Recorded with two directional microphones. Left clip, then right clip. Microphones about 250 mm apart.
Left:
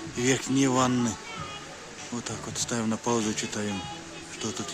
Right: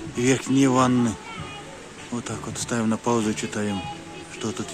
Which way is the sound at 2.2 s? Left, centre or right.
Centre.